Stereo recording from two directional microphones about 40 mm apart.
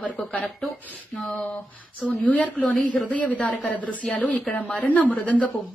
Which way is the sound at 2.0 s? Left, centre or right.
Left.